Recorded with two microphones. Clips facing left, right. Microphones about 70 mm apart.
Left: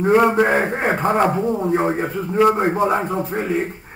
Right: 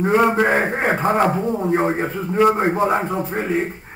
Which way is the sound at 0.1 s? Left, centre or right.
Centre.